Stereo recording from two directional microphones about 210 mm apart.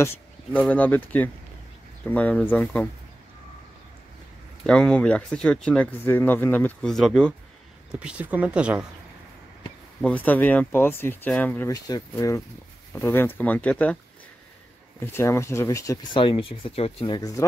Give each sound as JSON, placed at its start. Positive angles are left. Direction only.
{"t": 0.0, "sound": "speech", "side_deg": 10}
{"t": 4.6, "sound": "speech", "side_deg": 5}
{"t": 9.6, "sound": "speech", "side_deg": 5}
{"t": 15.1, "sound": "speech", "side_deg": 15}